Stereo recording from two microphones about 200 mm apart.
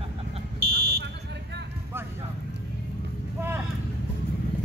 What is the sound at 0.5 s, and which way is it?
Fire alarm, 50° right (ahead or behind).